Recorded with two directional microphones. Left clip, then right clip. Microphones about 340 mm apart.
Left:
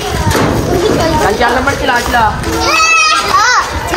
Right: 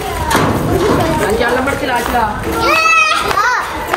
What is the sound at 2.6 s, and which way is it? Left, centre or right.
Speech, right.